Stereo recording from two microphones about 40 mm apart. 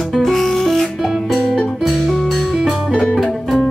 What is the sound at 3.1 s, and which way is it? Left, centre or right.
Music, centre.